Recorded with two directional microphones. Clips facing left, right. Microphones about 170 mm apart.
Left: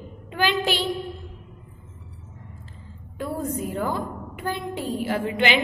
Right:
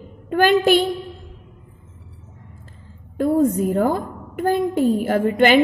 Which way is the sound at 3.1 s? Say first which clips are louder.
Right 11 dB; 45° right (ahead or behind).